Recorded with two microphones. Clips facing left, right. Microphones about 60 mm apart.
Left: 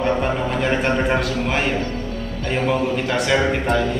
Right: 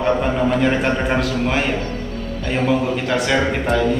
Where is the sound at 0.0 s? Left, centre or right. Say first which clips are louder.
Right 2 dB; centre.